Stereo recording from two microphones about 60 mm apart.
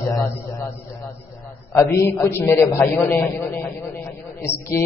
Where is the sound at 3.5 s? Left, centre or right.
Left.